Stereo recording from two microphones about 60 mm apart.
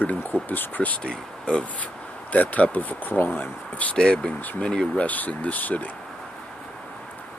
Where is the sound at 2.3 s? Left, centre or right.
Left.